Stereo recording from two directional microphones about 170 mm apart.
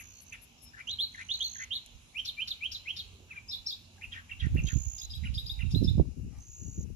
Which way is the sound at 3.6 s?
45° right (ahead or behind).